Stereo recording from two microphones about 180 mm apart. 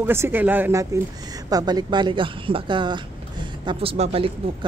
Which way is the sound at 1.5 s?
25° right (ahead or behind).